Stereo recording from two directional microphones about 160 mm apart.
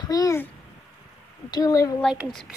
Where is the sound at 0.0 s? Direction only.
20° left (ahead or behind).